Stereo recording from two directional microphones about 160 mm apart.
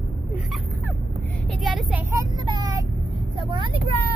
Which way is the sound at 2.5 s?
25° right (ahead or behind).